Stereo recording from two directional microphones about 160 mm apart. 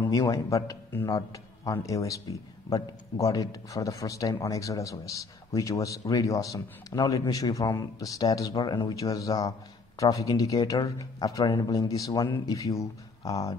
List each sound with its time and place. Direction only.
0.0 s a man's voice: 25° left (ahead or behind)